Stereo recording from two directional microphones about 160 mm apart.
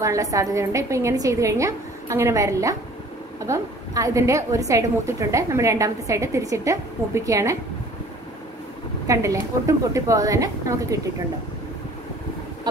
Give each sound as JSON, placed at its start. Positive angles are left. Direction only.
{"t": 0.0, "sound": "a woman's voice", "side_deg": -20}
{"t": 9.0, "sound": "a woman's voice", "side_deg": -20}